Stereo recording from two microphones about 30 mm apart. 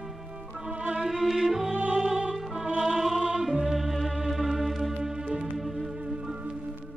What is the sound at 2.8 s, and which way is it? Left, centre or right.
Music, centre.